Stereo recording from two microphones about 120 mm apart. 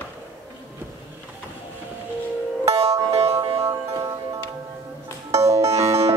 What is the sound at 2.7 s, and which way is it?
Music, 30° right (ahead or behind).